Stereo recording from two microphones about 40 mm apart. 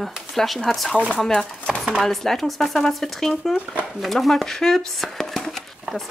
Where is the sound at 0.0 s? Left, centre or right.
Centre.